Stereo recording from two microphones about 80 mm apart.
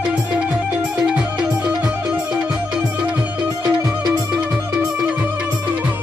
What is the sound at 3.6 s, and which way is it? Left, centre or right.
Music, right.